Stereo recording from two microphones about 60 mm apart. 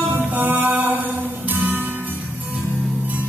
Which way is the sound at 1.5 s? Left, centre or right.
Right.